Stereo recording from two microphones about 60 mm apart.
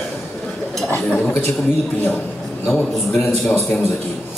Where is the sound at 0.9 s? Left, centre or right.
Left.